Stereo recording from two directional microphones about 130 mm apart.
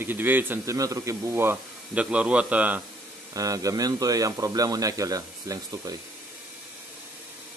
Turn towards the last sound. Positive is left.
turn(degrees=-25)  # may be behind; listen again after turning